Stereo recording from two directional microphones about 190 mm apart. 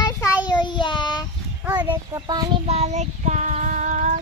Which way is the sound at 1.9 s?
20° right (ahead or behind).